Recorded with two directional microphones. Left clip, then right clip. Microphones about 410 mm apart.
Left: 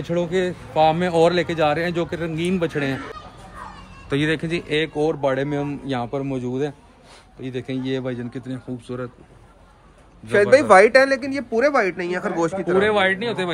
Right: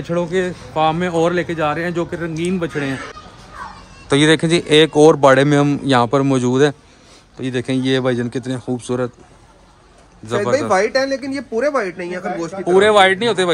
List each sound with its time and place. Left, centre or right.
0.0 s speech: centre
4.1 s speech: centre
10.5 s speech: left
11.1 s speech: centre
12.4 s speech: left
12.7 s speech: centre